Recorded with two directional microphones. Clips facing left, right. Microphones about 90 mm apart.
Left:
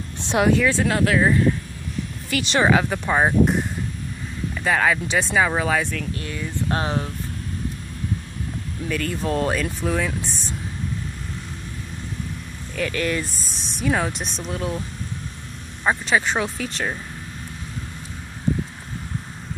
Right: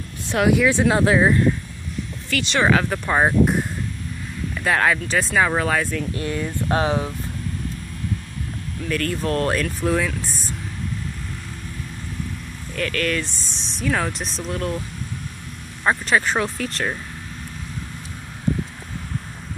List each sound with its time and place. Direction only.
0.5 s speech: 15° right (ahead or behind)
2.2 s speech: 20° left (ahead or behind)
2.6 s speech: 5° left (ahead or behind)
4.6 s speech: centre (ahead or behind)
6.1 s speech: 30° right (ahead or behind)
6.4 s speech: 20° right (ahead or behind)
8.8 s speech: 5° left (ahead or behind)
12.7 s speech: 15° left (ahead or behind)
15.8 s speech: centre (ahead or behind)